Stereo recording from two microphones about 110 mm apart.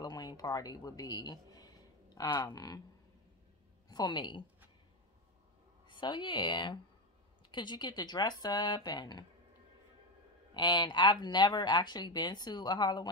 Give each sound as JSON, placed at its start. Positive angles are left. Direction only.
{"t": 0.0, "sound": "a man's voice", "side_deg": 40}
{"t": 3.9, "sound": "speech", "side_deg": 40}
{"t": 5.9, "sound": "a woman's voice", "side_deg": 45}
{"t": 10.5, "sound": "speech", "side_deg": 40}